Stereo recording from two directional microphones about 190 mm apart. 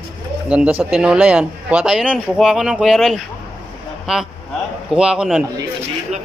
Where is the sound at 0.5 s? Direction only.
5° right (ahead or behind).